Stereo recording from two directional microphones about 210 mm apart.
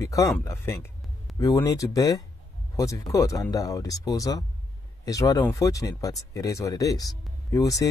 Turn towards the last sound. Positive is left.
turn(degrees=15)  # may be behind; listen again after turning